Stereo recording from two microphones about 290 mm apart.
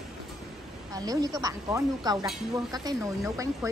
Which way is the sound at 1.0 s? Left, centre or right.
Centre.